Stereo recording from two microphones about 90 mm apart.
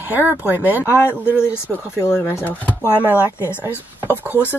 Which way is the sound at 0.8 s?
30° left (ahead or behind).